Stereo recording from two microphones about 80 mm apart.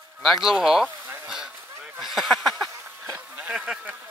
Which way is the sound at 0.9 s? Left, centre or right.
Right.